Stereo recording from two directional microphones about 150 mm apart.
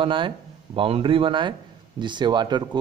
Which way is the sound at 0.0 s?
35° right (ahead or behind).